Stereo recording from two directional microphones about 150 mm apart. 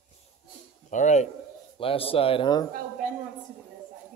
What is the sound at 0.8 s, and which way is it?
Speech, 55° left (ahead or behind).